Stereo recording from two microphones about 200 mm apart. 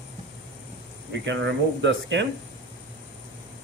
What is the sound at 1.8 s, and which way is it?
Speech, 65° right (ahead or behind).